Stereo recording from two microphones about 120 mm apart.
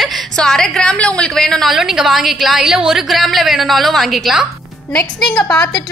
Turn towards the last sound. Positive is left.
turn(degrees=5)  # may be behind; listen again after turning